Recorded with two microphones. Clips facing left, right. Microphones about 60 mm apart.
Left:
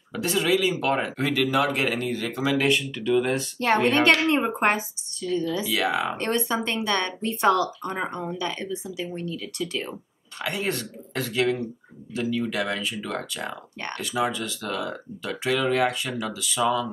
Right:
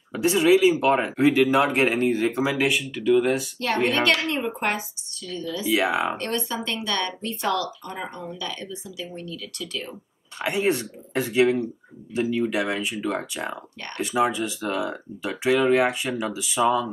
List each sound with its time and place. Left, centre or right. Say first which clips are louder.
0.1 s speech: right 5 dB; centre
2.6 s speech: even; centre
3.5 s speech: left 2 dB; left
5.7 s speech: right 6 dB; right
6.1 s speech: left 3 dB; left
10.4 s speech: right 5 dB; right